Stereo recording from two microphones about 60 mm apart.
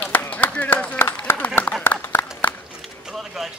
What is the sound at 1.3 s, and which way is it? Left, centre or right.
Speech, left.